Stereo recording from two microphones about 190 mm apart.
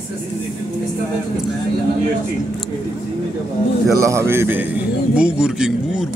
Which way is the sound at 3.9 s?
15° right (ahead or behind).